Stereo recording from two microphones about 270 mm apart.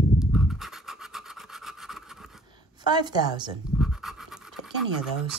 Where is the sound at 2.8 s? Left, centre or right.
Centre.